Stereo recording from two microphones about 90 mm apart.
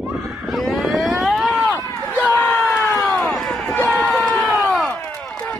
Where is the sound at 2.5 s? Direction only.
25° left (ahead or behind).